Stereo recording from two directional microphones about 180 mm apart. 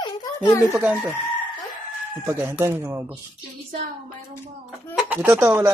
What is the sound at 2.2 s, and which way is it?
Speech, 15° right (ahead or behind).